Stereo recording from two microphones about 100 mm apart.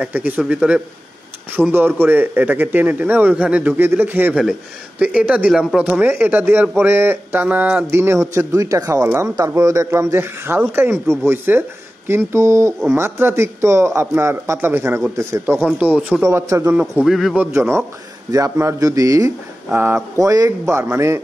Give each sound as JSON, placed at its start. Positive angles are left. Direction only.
{"t": 0.0, "sound": "a man's voice", "side_deg": -15}
{"t": 15.8, "sound": "speech", "side_deg": -15}
{"t": 16.2, "sound": "a man's voice", "side_deg": -30}
{"t": 16.8, "sound": "a man's voice", "side_deg": 0}
{"t": 17.5, "sound": "a man's voice", "side_deg": -25}
{"t": 19.7, "sound": "a man's voice", "side_deg": -20}
{"t": 20.2, "sound": "speech", "side_deg": -35}